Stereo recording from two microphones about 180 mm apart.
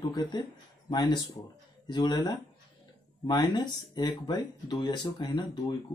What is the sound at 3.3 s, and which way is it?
Speech, 25° left (ahead or behind).